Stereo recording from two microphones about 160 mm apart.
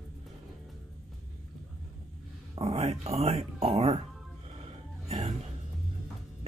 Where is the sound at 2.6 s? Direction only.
40° right (ahead or behind).